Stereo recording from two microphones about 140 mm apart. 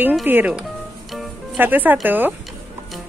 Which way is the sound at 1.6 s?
15° right (ahead or behind).